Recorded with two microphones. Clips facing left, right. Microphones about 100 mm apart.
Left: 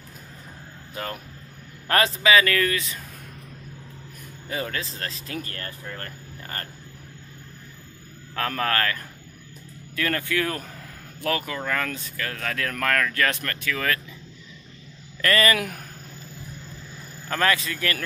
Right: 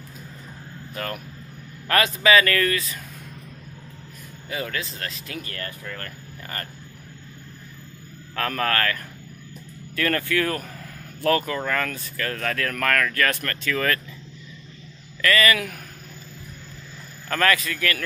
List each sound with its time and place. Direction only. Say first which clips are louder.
0.9 s speech: right 1 dB; 20° left (ahead or behind)
1.9 s speech: even; 30° left (ahead or behind)
2.2 s speech: right 2 dB; 15° left (ahead or behind)
4.5 s speech: even; 35° left (ahead or behind)
8.4 s speech: right 1 dB; 15° left (ahead or behind)
15.2 s speech: right 1 dB; 40° left (ahead or behind)
17.3 s speech: right 1 dB; 15° left (ahead or behind)